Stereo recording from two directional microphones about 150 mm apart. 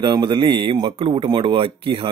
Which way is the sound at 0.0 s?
30° right (ahead or behind).